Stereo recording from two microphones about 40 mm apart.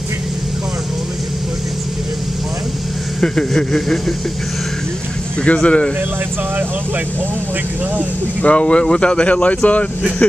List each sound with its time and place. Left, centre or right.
3.2 s speech: centre
5.6 s speech: left
8.4 s speech: left